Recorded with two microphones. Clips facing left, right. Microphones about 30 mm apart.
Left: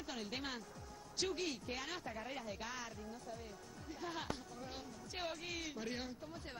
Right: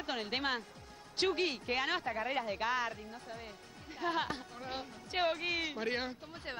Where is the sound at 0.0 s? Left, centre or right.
Right.